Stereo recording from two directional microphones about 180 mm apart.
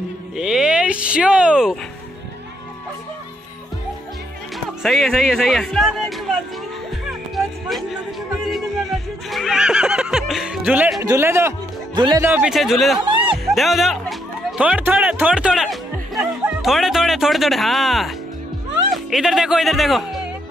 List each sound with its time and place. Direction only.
0.4 s speech: 5° right (ahead or behind)
4.8 s speech: centre (ahead or behind)
7.1 s music: centre (ahead or behind)
9.3 s speech: centre (ahead or behind); by 12.3 s 20° right (ahead or behind)
12.3 s speech: 5° right (ahead or behind)